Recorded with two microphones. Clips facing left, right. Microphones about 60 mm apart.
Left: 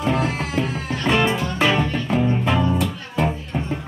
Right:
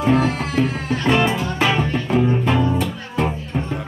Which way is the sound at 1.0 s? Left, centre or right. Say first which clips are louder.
Right 1 dB; centre.